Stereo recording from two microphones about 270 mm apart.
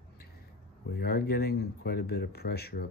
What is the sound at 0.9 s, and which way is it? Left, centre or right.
Speech, left.